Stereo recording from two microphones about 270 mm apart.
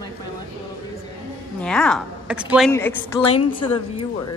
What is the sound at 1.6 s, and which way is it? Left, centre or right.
A woman's voice, centre.